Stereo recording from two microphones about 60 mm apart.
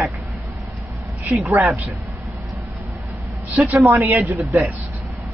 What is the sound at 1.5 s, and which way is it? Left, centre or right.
Speech, right.